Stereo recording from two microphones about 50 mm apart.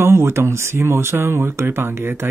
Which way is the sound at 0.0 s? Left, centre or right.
Right.